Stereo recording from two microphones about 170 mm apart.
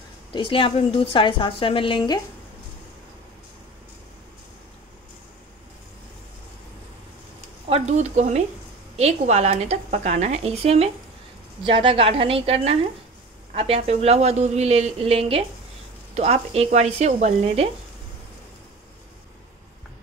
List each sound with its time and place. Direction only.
0.3 s a woman's voice: 30° left (ahead or behind)
7.7 s a woman's voice: 45° right (ahead or behind)